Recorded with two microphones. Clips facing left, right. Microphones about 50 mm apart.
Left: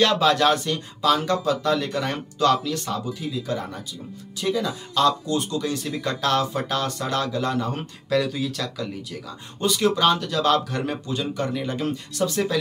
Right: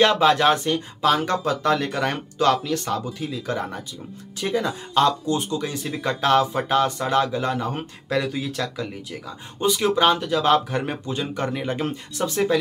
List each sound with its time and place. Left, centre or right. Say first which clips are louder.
0.0 s speech: right 2 dB; right